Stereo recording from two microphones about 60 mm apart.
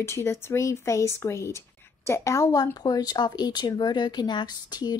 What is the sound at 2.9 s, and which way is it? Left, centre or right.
Speech, left.